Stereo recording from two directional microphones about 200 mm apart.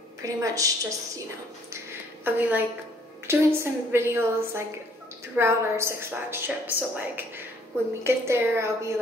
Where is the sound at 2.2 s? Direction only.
10° right (ahead or behind).